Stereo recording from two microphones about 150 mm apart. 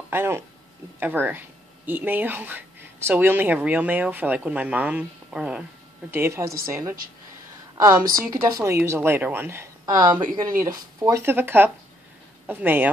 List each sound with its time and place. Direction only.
0.1 s speech: 15° right (ahead or behind)
6.1 s speech: 15° right (ahead or behind)
7.9 s a woman's voice: 70° right (ahead or behind)
8.2 s speech: 20° right (ahead or behind)